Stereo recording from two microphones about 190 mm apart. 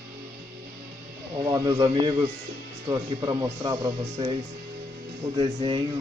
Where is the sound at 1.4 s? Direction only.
15° right (ahead or behind).